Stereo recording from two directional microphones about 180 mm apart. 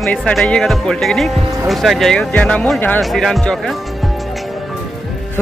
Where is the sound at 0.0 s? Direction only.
5° left (ahead or behind).